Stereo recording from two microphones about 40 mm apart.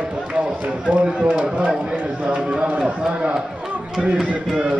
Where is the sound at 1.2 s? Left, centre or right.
Right.